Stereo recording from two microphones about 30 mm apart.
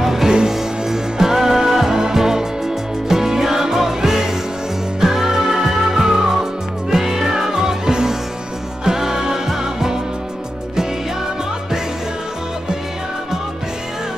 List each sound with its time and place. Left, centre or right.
0.0 s music: centre